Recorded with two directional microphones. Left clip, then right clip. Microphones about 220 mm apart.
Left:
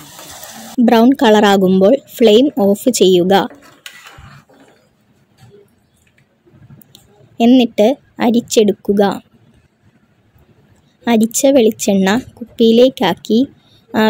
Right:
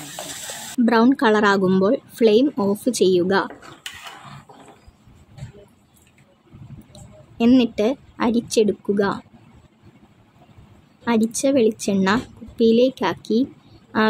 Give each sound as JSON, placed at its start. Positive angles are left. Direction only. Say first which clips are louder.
{"t": 0.8, "sound": "a woman's voice", "louder": "left 7 dB", "side_deg": 20}
{"t": 6.9, "sound": "a woman's voice", "louder": "even", "side_deg": 20}
{"t": 11.1, "sound": "a woman's voice", "louder": "left 8 dB", "side_deg": 20}